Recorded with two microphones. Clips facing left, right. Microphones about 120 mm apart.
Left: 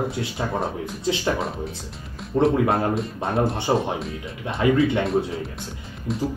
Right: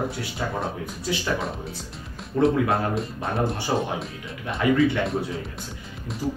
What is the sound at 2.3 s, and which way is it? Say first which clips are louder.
Speech: left 2 dB; 30° left (ahead or behind).